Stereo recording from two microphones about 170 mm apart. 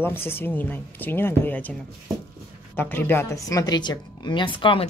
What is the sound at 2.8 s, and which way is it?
Speech, 10° left (ahead or behind).